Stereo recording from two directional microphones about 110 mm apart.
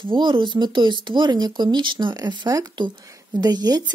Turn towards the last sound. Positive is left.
turn(degrees=-40)  # may be behind; listen again after turning